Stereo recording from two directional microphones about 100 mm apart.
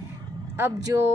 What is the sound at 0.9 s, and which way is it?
Speech, 30° right (ahead or behind).